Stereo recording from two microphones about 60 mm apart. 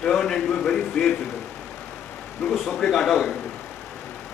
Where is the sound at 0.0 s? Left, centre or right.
Centre.